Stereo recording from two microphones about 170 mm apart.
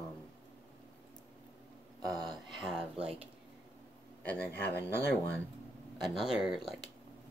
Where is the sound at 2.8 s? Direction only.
35° right (ahead or behind).